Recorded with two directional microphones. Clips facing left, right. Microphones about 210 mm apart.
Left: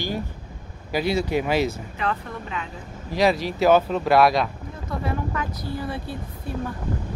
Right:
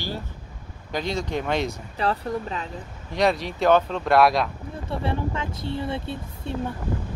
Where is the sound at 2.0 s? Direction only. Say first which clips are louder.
Right 4 dB; 35° right (ahead or behind).